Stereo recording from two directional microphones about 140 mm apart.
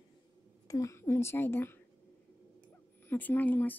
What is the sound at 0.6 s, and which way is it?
Speech, 25° left (ahead or behind).